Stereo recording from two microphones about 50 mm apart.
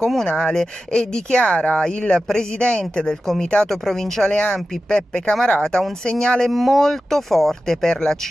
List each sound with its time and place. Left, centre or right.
0.0 s speech: centre
6.5 s speech: centre